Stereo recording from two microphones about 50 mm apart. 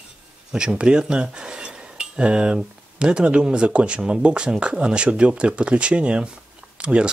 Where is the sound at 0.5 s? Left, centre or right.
Centre.